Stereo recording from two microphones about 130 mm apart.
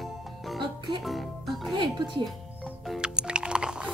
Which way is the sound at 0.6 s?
35° right (ahead or behind).